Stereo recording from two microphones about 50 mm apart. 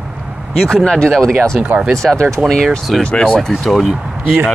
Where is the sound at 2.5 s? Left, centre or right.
Centre.